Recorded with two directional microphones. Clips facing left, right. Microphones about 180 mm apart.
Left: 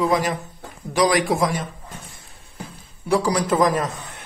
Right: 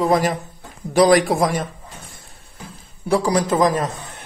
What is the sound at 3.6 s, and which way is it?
Speech, 30° right (ahead or behind).